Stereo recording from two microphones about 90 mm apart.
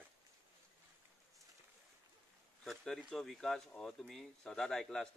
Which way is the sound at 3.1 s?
5° left (ahead or behind).